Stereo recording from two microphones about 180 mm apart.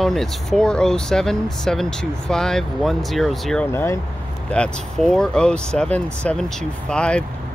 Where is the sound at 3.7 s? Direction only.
15° left (ahead or behind).